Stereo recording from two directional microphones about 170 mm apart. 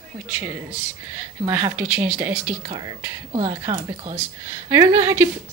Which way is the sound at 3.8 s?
35° right (ahead or behind).